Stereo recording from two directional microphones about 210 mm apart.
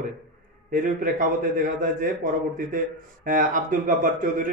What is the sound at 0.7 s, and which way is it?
A man's voice, 40° right (ahead or behind).